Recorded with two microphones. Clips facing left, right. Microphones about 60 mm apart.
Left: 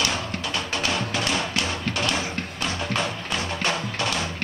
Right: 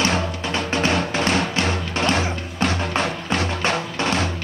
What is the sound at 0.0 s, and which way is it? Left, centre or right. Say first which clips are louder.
Music: right 5 dB; right.